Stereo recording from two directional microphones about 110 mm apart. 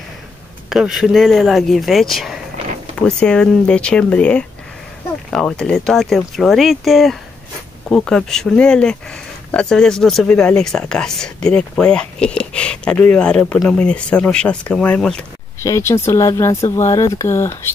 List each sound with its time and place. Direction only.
0.7 s speech: 5° right (ahead or behind)
15.6 s speech: 25° left (ahead or behind)